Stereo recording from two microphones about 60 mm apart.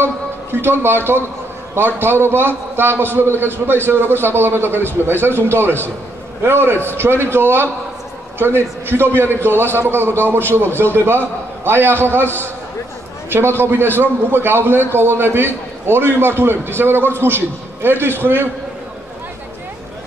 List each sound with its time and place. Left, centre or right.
0.6 s a man's voice: right